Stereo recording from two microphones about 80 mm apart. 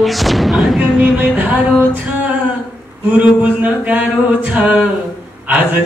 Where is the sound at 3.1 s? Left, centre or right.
Centre.